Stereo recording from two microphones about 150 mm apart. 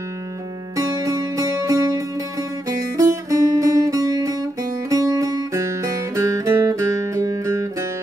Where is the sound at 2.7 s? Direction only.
20° right (ahead or behind).